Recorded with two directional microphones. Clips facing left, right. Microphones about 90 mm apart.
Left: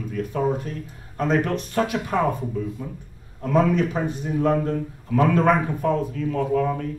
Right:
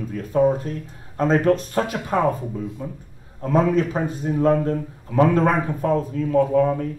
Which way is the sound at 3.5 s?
40° right (ahead or behind).